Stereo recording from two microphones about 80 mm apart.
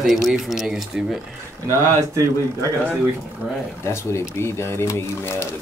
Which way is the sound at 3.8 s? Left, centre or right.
Left.